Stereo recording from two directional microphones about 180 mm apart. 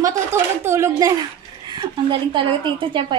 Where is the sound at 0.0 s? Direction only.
15° right (ahead or behind).